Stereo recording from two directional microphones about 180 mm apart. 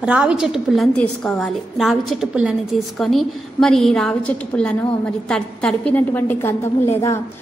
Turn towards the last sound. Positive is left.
turn(degrees=15)  # may be behind; listen again after turning